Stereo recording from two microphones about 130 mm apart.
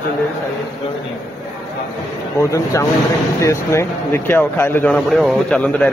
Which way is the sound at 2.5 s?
20° left (ahead or behind).